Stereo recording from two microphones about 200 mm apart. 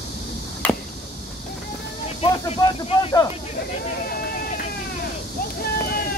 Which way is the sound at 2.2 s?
30° left (ahead or behind).